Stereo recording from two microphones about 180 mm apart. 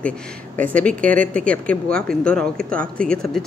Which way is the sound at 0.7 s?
10° left (ahead or behind).